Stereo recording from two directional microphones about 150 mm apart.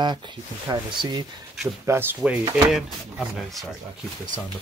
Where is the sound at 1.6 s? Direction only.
15° right (ahead or behind).